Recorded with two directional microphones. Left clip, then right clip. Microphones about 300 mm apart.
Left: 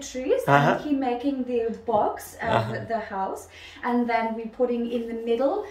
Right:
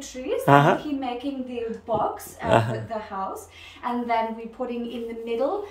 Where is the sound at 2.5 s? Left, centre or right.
Right.